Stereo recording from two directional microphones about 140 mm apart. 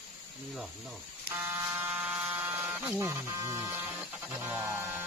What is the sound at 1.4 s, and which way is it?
Buzzer, 20° right (ahead or behind).